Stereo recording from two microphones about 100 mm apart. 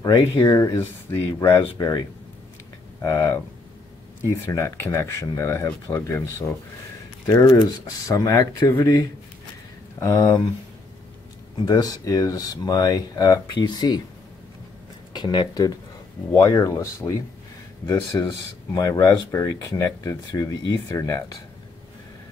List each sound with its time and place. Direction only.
0.0 s speech: 40° left (ahead or behind)
3.0 s speech: 25° left (ahead or behind)
7.2 s speech: 40° left (ahead or behind)
11.5 s speech: 40° left (ahead or behind)
15.1 s speech: 45° left (ahead or behind)
16.4 s speech: 30° left (ahead or behind)
18.1 s speech: 35° left (ahead or behind)